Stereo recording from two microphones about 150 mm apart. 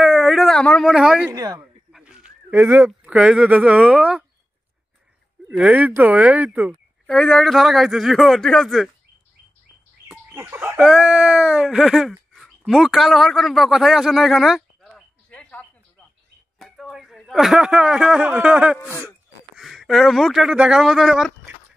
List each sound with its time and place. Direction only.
0.0 s a sound: centre (ahead or behind)
1.3 s speech: 25° right (ahead or behind)
1.9 s speech: 5° right (ahead or behind)
5.6 s speech: 10° right (ahead or behind)
7.1 s speech: 5° left (ahead or behind)
10.3 s a man's voice: 15° right (ahead or behind)